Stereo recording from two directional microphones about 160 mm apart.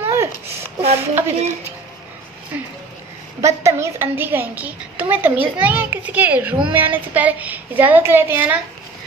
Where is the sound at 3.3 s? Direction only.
20° right (ahead or behind).